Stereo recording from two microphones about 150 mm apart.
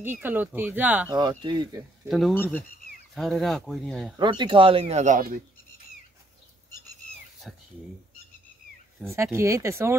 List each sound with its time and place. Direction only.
0.0 s speech: 15° right (ahead or behind)
1.1 s speech: 30° right (ahead or behind)
2.0 s speech: centre (ahead or behind)
2.3 s speech: 15° left (ahead or behind)
3.2 s speech: centre (ahead or behind)
4.2 s speech: 30° right (ahead or behind); by 5.4 s 65° right (ahead or behind)
9.0 s speech: 20° right (ahead or behind)